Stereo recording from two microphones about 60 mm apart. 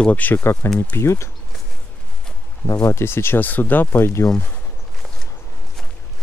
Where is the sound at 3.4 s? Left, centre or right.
Left.